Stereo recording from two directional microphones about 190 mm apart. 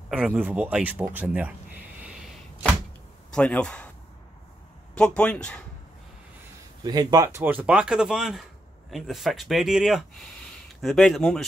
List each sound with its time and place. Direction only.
0.1 s speech: 5° right (ahead or behind)
2.0 s arrow: centre (ahead or behind)
3.3 s a man's voice: 5° left (ahead or behind)
4.9 s speech: 5° left (ahead or behind)
6.8 s speech: 20° right (ahead or behind); by 11.4 s centre (ahead or behind)